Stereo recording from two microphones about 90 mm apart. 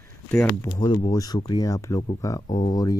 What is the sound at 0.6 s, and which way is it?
Speech, 60° left (ahead or behind).